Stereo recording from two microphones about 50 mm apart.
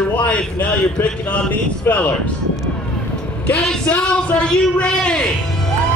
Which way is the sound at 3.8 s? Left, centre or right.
Centre.